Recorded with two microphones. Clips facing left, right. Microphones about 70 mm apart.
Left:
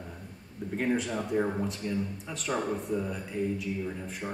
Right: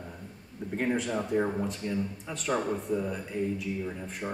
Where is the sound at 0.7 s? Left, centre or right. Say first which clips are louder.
Even; centre.